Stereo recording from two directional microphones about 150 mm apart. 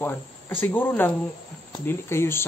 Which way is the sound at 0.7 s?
15° left (ahead or behind).